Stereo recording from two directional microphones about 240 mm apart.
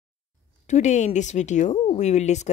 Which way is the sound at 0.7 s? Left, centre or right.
Left.